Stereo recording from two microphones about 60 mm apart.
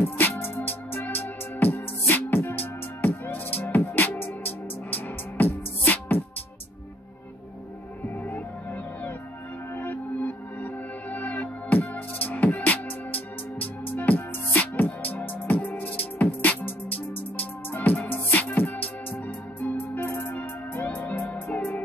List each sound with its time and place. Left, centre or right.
0.0 s music: left
8.0 s music: left
9.8 s music: left